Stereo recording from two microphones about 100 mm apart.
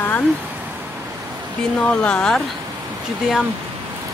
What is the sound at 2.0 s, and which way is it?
Speech, 10° left (ahead or behind).